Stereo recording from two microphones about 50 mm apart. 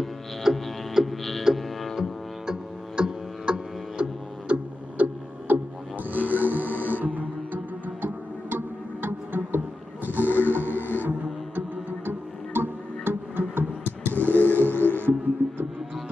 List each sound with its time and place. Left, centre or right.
0.0 s music: centre; by 9.6 s right
10.0 s roaring cats: right
10.7 s music: left
11.1 s music: right
13.8 s a sound: left
15.0 s music: right